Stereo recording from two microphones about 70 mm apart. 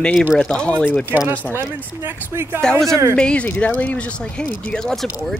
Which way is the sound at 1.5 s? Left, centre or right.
Right.